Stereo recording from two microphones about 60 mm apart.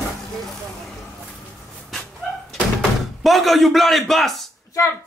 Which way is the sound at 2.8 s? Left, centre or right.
Centre.